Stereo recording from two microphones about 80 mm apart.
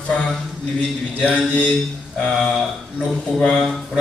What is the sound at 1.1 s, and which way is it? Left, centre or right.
A man's voice, centre.